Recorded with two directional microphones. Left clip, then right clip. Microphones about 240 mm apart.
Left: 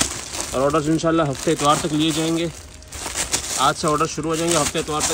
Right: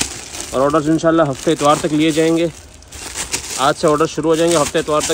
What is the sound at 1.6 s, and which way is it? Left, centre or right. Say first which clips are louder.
Speech: right 5 dB; centre.